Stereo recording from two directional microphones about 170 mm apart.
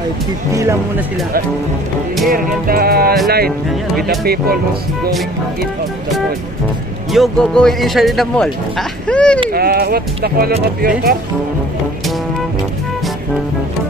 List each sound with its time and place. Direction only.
0.5 s speech: 15° right (ahead or behind)
2.2 s speech: 60° right (ahead or behind)
7.1 s speech: centre (ahead or behind)
9.5 s speech: 65° right (ahead or behind)